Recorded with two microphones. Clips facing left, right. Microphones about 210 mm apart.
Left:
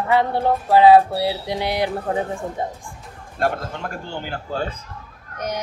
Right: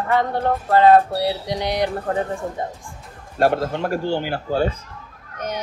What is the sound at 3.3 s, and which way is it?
Speech, 40° right (ahead or behind).